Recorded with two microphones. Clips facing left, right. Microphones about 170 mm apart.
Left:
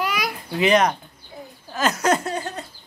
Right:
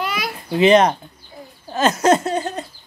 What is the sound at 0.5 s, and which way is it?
Speech, 25° right (ahead or behind).